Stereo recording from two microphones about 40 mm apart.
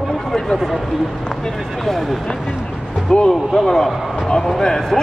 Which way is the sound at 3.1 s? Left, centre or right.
Left.